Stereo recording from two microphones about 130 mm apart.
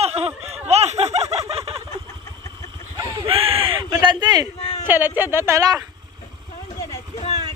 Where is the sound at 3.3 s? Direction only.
45° right (ahead or behind).